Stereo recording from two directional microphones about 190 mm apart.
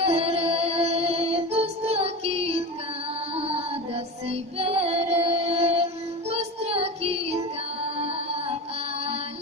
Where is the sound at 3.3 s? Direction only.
30° right (ahead or behind).